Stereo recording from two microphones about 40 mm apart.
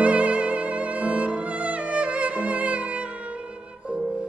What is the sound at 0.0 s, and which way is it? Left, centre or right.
Music, right.